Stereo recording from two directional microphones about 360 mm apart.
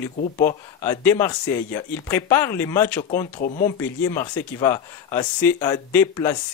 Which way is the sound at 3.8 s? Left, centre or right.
Centre.